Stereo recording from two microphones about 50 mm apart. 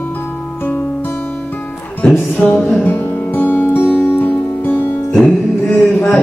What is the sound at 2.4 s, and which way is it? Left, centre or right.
Mantra, left.